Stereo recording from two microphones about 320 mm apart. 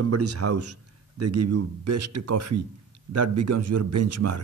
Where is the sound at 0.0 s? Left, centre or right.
Right.